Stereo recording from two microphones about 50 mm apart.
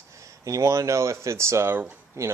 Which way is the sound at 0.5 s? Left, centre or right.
Right.